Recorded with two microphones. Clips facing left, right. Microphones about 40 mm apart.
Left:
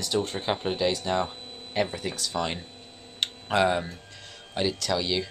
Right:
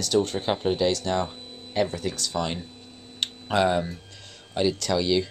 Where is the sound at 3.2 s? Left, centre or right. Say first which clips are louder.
Right 1 dB; centre.